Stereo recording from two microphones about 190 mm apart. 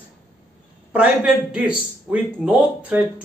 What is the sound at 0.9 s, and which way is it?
A man's voice, 5° right (ahead or behind).